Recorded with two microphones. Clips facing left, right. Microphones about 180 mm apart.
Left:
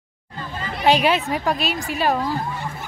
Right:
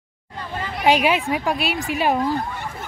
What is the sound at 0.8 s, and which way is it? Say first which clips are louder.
A woman's voice: even; 10° right (ahead or behind).